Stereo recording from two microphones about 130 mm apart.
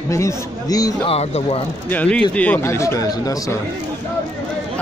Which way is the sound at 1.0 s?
50° left (ahead or behind).